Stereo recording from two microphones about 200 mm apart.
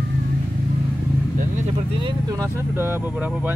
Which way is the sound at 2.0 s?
15° right (ahead or behind).